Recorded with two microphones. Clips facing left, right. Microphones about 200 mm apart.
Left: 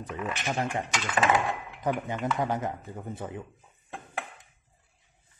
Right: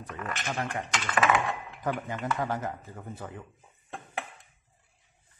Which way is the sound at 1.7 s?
15° left (ahead or behind).